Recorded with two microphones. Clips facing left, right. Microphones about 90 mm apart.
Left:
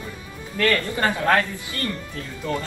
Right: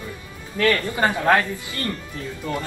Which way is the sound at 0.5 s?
15° right (ahead or behind).